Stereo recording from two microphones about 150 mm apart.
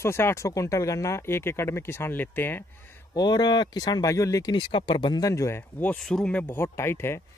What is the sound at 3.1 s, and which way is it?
Speech, 25° left (ahead or behind).